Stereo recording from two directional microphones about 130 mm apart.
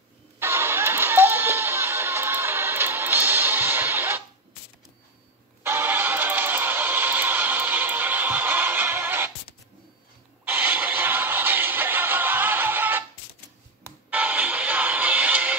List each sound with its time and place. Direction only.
0.4 s music: 20° right (ahead or behind)
5.6 s music: 15° right (ahead or behind)
10.4 s music: 15° right (ahead or behind)
14.1 s music: 10° right (ahead or behind)